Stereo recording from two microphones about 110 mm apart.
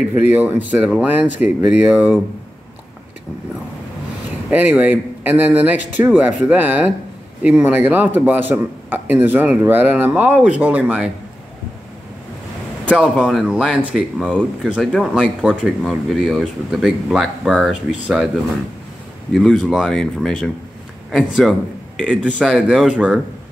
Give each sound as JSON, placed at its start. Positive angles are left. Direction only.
{"t": 0.2, "sound": "a man's voice", "side_deg": -15}
{"t": 4.5, "sound": "a man's voice", "side_deg": -15}
{"t": 12.9, "sound": "speech", "side_deg": -5}
{"t": 19.3, "sound": "a man's voice", "side_deg": 0}